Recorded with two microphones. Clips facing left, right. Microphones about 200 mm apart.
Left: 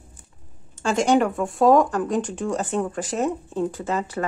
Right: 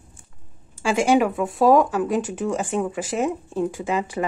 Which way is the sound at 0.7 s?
10° right (ahead or behind).